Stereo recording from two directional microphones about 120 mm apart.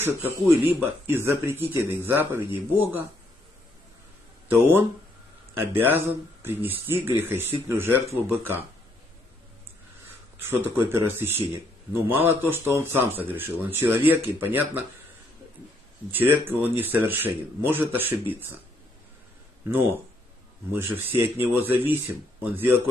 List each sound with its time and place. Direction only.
0.0 s speech: 20° right (ahead or behind)
4.5 s a man's voice: 20° right (ahead or behind)
10.5 s a man's voice: 20° right (ahead or behind)
16.1 s a man's voice: 15° right (ahead or behind)
20.7 s a man's voice: 20° right (ahead or behind)